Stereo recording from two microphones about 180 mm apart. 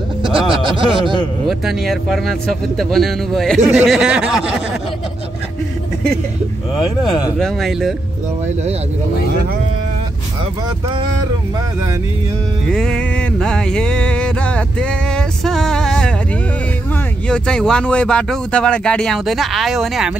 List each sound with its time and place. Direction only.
0.5 s speech: 30° right (ahead or behind)
1.5 s music: centre (ahead or behind)
7.2 s music: centre (ahead or behind)
12.6 s music: 5° left (ahead or behind)
17.3 s music: 5° left (ahead or behind)